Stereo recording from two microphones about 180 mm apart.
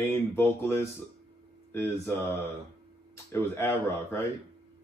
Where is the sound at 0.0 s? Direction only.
15° left (ahead or behind).